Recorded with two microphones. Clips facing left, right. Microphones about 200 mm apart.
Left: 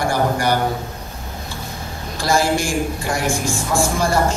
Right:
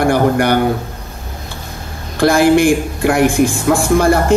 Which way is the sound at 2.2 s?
60° right (ahead or behind).